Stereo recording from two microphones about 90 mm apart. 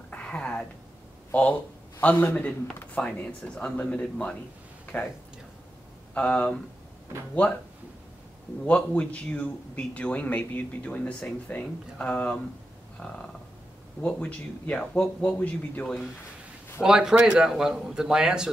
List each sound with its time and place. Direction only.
0.1 s a sound: 15° left (ahead or behind)
1.3 s a man's voice: 15° left (ahead or behind)
6.1 s a man's voice: 15° left (ahead or behind)
8.6 s a man's voice: 15° left (ahead or behind)
16.8 s a man's voice: 10° right (ahead or behind)